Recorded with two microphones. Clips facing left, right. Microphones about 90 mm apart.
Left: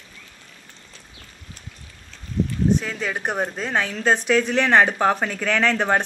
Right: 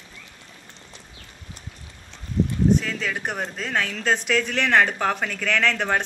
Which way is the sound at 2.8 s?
15° left (ahead or behind).